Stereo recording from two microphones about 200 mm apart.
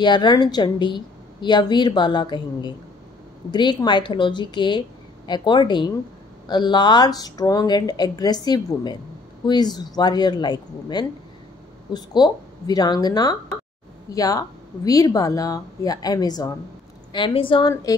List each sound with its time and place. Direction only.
0.0 s a woman's voice: 20° left (ahead or behind)